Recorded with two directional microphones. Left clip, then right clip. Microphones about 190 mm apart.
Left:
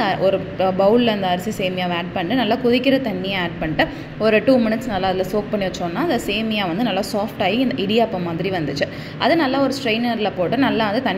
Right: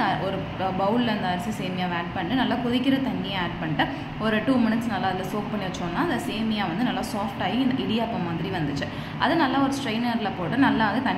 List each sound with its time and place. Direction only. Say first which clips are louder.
0.0 s a woman's voice: left 7 dB; 30° left (ahead or behind)
6.5 s a woman's voice: left 4 dB; 30° left (ahead or behind)
9.2 s a woman's voice: left 5 dB; 25° left (ahead or behind)